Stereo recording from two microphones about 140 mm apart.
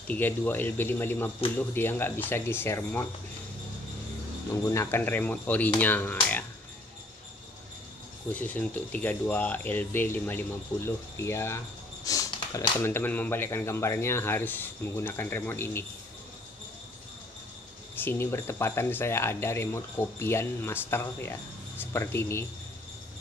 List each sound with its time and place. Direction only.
0.1 s speech: 15° left (ahead or behind)
4.6 s speech: 20° left (ahead or behind)
8.3 s speech: 10° left (ahead or behind)
11.1 s a sound: 20° left (ahead or behind)
12.7 s speech: 15° left (ahead or behind)
17.9 s speech: 15° left (ahead or behind)